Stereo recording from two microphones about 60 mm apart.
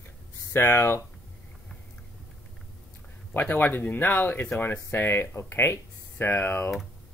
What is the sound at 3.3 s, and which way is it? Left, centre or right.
Speech, left.